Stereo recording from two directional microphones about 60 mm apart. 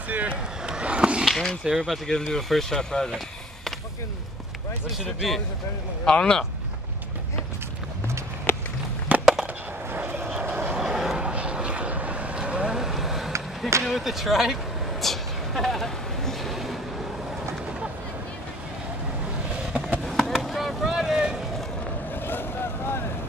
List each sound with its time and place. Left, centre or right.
0.1 s speech: right
0.7 s skateboard: centre
1.2 s speech: centre
5.2 s speech: centre
8.5 s walk: left
9.2 s skateboard: centre
9.9 s vehicle: right
10.8 s vehicle: centre
20.1 s chop: centre
22.2 s vehicle: left